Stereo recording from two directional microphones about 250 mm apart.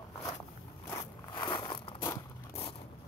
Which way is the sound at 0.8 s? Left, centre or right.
Centre.